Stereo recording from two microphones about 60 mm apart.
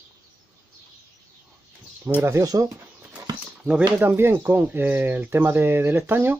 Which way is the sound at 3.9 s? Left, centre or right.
Right.